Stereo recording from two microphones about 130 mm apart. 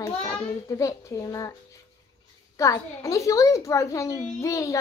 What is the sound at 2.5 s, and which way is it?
A child's voice, 25° left (ahead or behind).